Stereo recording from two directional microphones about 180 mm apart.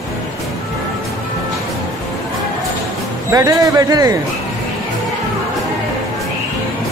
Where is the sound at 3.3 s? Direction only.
20° right (ahead or behind).